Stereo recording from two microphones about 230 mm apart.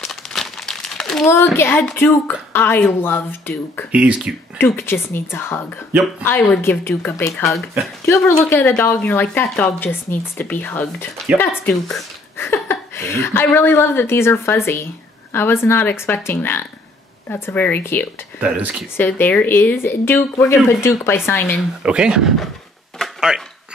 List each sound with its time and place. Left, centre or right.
0.0 s speech: centre
3.9 s speech: centre
4.6 s speech: centre
7.5 s speech: centre
8.0 s speech: centre
18.4 s speech: centre
18.9 s speech: centre
21.8 s speech: centre
22.9 s a sound: centre